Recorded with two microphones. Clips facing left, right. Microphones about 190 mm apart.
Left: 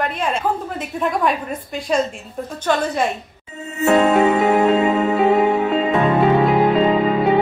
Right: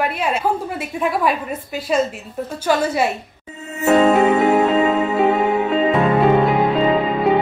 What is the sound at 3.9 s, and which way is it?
Music, centre (ahead or behind).